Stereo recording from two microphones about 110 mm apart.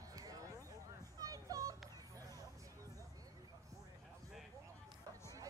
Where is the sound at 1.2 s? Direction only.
30° right (ahead or behind).